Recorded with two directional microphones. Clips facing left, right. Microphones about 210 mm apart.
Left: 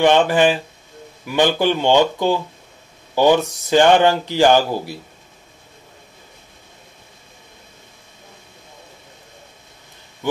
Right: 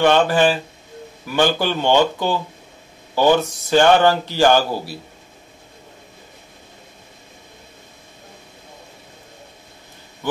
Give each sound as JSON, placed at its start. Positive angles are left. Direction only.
{"t": 0.0, "sound": "speech", "side_deg": 15}